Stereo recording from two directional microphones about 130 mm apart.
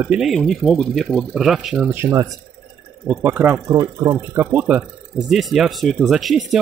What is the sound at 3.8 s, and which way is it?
Speech, 35° right (ahead or behind).